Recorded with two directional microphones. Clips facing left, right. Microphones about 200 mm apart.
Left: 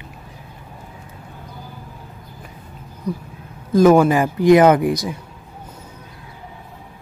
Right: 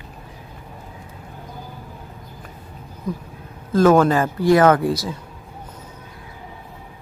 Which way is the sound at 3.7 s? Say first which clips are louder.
Left 2 dB; 15° left (ahead or behind).